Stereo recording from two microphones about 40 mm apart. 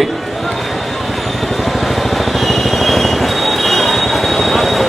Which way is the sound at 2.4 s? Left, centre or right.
Centre.